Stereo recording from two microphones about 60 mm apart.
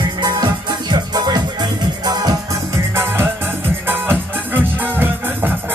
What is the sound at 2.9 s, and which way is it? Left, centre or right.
Music, right.